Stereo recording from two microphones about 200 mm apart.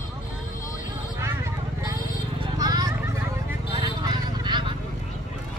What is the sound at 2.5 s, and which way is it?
Children playing, 20° right (ahead or behind).